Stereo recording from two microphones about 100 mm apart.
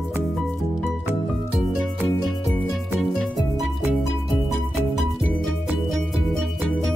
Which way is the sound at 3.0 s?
Centre (ahead or behind).